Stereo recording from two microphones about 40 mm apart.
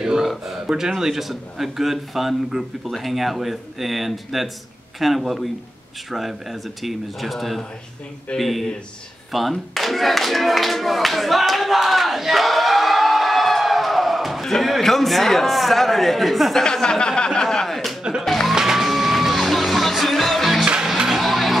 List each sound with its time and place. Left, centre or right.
0.2 s a sound: centre
0.7 s a man's voice: centre
9.3 s clapping: centre
14.4 s a sound: centre
14.8 s a man's voice: centre
16.6 s speech: centre
18.2 s music: centre
18.5 s music: centre
21.1 s a sound: centre